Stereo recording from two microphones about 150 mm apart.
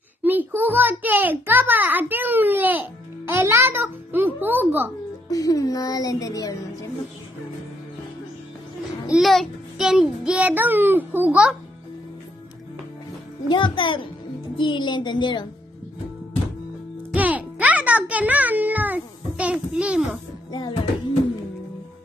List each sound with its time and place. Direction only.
0.2 s a child's voice: 10° right (ahead or behind)
5.3 s speech: 25° left (ahead or behind)
9.1 s a child's voice: centre (ahead or behind)
13.5 s a child's voice: 35° left (ahead or behind)
17.1 s music: 10° right (ahead or behind)